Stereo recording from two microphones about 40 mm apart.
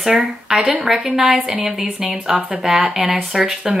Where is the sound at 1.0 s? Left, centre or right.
Right.